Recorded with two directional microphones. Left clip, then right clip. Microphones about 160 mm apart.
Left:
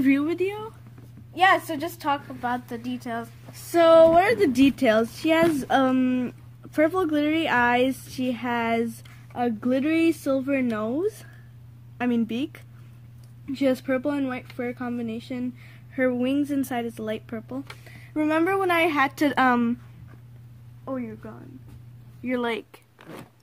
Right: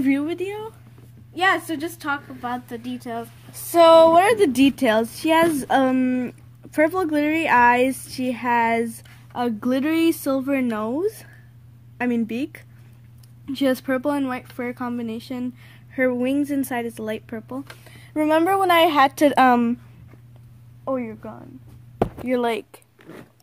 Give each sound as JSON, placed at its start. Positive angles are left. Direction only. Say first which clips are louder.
{"t": 0.0, "sound": "speech", "louder": "even", "side_deg": 0}
{"t": 1.3, "sound": "a woman's voice", "louder": "left 1 dB", "side_deg": 20}
{"t": 3.6, "sound": "a woman's voice", "louder": "right 3 dB", "side_deg": -30}
{"t": 9.3, "sound": "a woman's voice", "louder": "right 2 dB", "side_deg": -35}
{"t": 13.5, "sound": "speech", "louder": "right 2 dB", "side_deg": -35}
{"t": 20.8, "sound": "speech", "louder": "right 7 dB", "side_deg": -50}
{"t": 22.3, "sound": "speech", "louder": "right 2 dB", "side_deg": -25}